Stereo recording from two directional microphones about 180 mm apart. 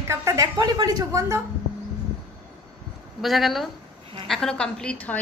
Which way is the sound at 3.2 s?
Centre (ahead or behind).